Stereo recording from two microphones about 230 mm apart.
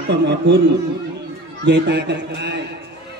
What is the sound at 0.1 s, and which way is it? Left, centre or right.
Speech, right.